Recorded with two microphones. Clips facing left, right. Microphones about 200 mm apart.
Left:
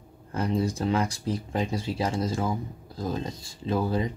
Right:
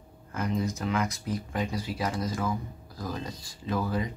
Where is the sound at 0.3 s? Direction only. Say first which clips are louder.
Left 3 dB; 30° left (ahead or behind).